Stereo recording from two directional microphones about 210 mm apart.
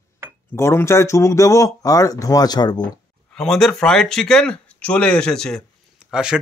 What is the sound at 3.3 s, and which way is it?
Speech, centre (ahead or behind).